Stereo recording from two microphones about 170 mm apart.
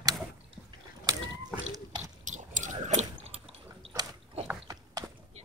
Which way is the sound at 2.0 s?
45° right (ahead or behind).